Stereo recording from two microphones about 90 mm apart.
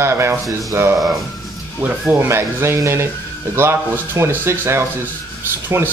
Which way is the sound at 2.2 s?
30° right (ahead or behind).